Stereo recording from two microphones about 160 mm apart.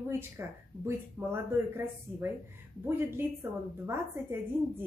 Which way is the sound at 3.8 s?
15° right (ahead or behind).